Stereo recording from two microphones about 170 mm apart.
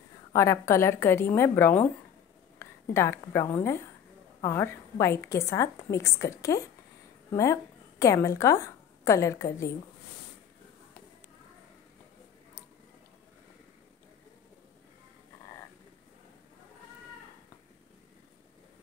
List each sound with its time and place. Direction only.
0.3 s a woman's voice: 15° left (ahead or behind)